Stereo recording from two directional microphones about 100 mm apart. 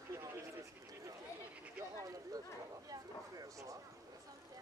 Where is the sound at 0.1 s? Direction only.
30° right (ahead or behind).